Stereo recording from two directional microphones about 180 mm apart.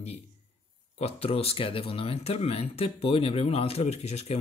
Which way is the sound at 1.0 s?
35° left (ahead or behind).